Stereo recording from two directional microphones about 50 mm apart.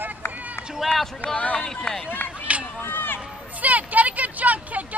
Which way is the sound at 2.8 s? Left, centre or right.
Left.